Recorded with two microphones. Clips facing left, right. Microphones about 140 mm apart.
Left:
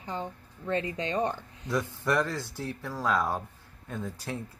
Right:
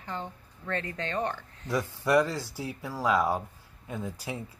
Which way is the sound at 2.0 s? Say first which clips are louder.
Right 6 dB; 10° right (ahead or behind).